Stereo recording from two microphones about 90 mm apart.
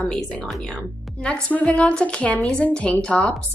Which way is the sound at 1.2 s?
15° left (ahead or behind).